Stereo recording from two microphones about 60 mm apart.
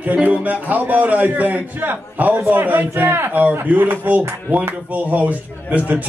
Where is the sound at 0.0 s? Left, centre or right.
Right.